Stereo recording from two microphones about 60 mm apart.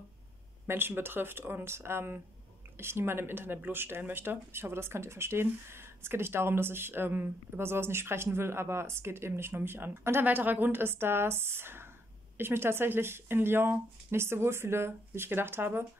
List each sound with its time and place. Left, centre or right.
0.7 s speech: right